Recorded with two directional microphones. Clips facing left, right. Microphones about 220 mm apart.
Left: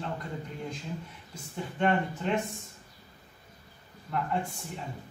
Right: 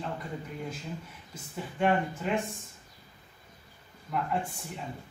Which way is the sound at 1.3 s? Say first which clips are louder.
Left 1 dB; 5° right (ahead or behind).